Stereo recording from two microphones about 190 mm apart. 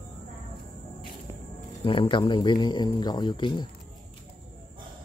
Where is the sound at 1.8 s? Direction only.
25° left (ahead or behind).